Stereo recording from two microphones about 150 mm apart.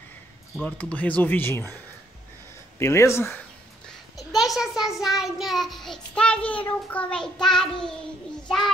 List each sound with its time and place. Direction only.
0.7 s speech: 10° left (ahead or behind)
2.8 s speech: 20° left (ahead or behind)
4.2 s a child's voice: centre (ahead or behind)